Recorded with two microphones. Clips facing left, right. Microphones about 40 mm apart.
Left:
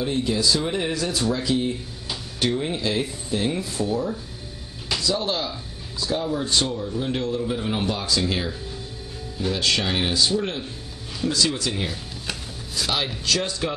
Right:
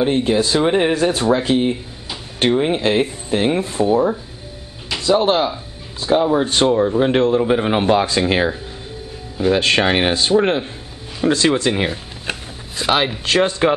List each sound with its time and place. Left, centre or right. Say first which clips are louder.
0.0 s speech: right 7 dB; right
6.9 s speech: right 11 dB; right